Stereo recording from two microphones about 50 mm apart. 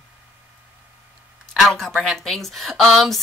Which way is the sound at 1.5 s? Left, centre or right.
Centre.